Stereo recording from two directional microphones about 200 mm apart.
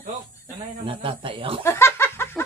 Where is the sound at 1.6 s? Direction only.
10° left (ahead or behind).